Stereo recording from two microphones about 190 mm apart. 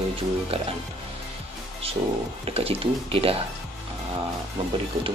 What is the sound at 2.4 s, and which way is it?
Speech, 30° right (ahead or behind).